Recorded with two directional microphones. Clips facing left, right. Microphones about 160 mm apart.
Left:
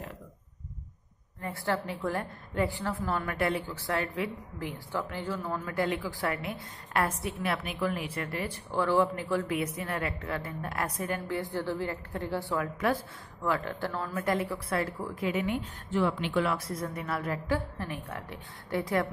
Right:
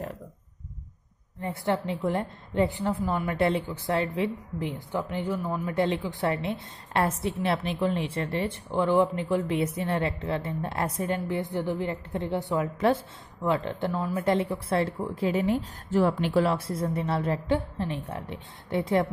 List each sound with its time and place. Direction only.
1.4 s a woman's voice: 20° right (ahead or behind)